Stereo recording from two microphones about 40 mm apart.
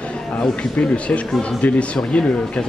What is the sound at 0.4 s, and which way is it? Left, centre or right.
Speech, left.